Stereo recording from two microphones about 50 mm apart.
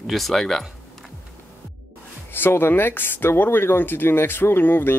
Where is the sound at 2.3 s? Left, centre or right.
Left.